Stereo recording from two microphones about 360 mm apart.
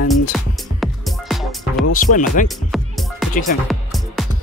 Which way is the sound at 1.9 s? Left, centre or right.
Left.